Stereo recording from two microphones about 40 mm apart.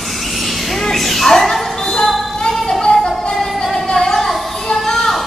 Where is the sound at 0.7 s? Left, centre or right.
Centre.